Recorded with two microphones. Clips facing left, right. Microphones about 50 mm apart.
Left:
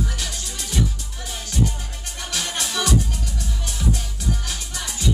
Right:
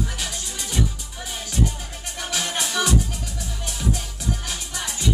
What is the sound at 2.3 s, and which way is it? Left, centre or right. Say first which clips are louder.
Music: right 1 dB; centre.